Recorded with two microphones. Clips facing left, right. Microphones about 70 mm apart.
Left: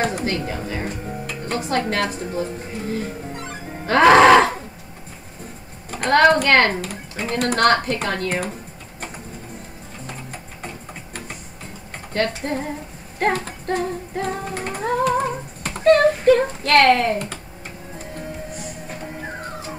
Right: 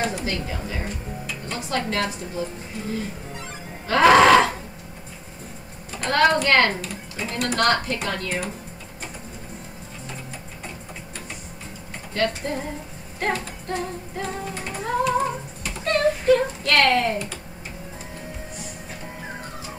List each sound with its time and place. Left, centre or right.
0.0 s speech: left
5.9 s a woman's voice: left
12.1 s speech: left
13.2 s singing: left